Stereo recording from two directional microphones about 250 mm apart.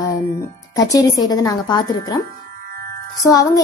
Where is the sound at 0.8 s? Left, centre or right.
Centre.